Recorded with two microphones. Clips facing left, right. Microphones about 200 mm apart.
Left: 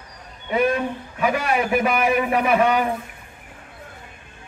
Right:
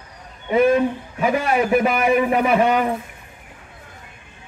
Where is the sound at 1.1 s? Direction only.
30° right (ahead or behind).